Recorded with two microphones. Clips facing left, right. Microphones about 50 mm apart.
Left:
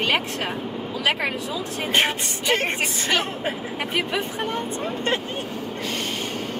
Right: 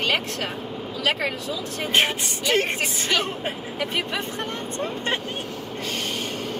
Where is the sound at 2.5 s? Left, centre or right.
Left.